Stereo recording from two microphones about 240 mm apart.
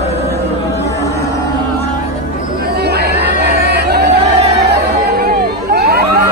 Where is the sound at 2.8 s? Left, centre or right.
Right.